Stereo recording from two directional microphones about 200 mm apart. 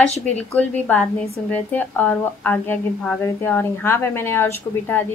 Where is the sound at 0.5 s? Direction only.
5° left (ahead or behind).